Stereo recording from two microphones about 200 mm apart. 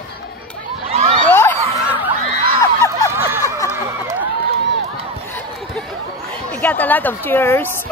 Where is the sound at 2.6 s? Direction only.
15° left (ahead or behind).